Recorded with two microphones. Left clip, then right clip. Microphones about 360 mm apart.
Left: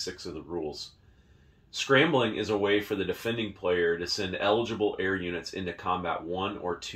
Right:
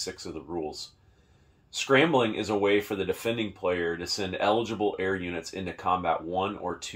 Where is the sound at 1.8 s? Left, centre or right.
Right.